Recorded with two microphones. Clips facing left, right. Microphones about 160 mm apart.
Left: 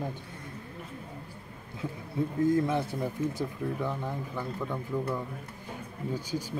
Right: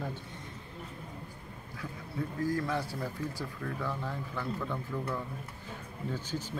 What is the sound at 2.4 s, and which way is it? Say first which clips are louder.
Speech: left 6 dB; 20° left (ahead or behind).